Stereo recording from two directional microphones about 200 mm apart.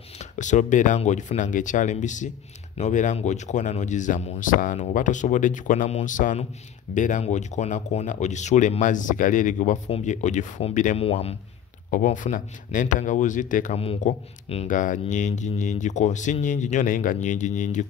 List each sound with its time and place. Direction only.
0.2 s speech: 35° left (ahead or behind)
11.9 s speech: 40° left (ahead or behind)